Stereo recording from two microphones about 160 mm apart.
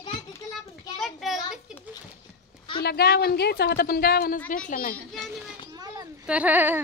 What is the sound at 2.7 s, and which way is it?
A woman's voice, 80° left.